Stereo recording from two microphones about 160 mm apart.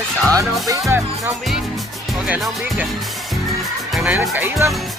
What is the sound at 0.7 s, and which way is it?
Speech, 15° right (ahead or behind).